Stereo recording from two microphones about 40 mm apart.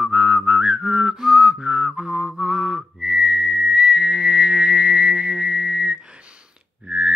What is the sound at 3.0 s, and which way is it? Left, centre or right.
Whistling, centre.